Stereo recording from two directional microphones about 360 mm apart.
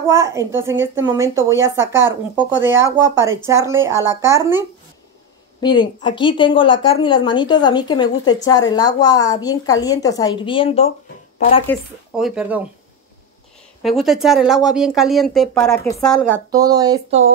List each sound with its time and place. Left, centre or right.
0.1 s speech: centre
5.6 s speech: centre
11.6 s speech: centre
13.8 s speech: centre
16.5 s speech: centre